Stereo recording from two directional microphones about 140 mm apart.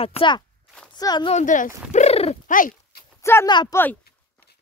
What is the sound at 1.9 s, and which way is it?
Horse, 50° left (ahead or behind).